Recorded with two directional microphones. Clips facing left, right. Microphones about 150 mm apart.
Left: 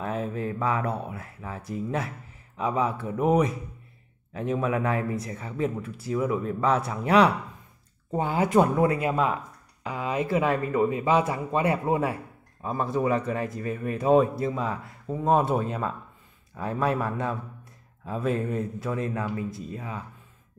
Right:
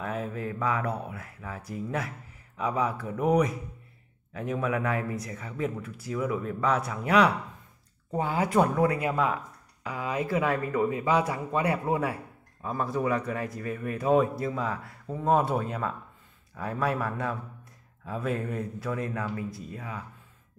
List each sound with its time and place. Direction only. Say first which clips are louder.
0.0 s speech: left 3 dB; 25° left (ahead or behind)